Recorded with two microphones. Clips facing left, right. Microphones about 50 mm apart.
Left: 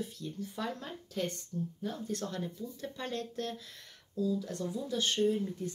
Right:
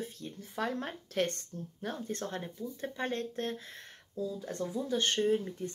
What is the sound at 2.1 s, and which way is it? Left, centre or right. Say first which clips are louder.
Speech: left 1 dB; right.